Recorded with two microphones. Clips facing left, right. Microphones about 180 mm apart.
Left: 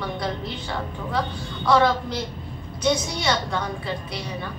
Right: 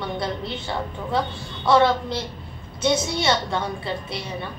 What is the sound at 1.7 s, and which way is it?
A woman's voice, 25° right (ahead or behind).